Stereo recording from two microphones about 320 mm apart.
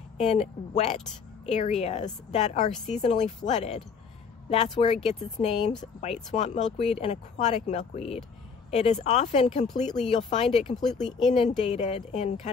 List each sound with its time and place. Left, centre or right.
0.2 s speech: centre
10.6 s speech: centre
11.3 s speech: centre